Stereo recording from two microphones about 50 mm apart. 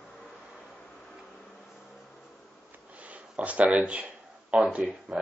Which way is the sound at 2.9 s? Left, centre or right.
Right.